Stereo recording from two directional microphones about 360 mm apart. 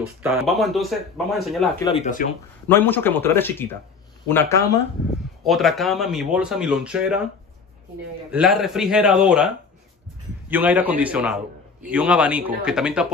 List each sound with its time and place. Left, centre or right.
0.2 s speech: centre
1.9 s speech: centre
2.7 s speech: centre
8.3 s speech: centre
10.5 s speech: centre